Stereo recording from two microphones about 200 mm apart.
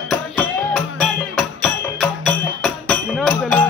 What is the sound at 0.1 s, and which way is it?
Music, 5° left (ahead or behind).